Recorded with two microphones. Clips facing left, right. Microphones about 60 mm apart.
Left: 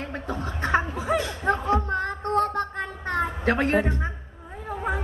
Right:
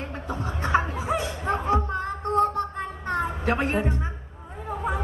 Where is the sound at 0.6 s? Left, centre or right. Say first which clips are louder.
Even; left.